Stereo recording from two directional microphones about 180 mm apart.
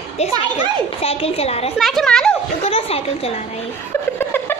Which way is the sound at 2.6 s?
35° left (ahead or behind).